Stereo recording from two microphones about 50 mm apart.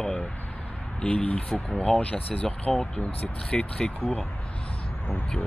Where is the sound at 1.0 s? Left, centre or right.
Left.